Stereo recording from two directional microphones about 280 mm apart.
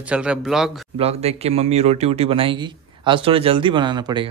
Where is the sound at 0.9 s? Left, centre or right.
Right.